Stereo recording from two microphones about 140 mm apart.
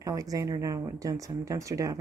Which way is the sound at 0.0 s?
25° right (ahead or behind).